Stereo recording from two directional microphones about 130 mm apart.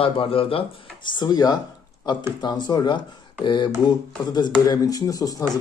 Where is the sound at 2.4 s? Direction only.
35° left (ahead or behind).